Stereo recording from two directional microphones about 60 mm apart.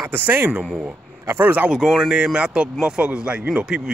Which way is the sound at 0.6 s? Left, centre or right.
Centre.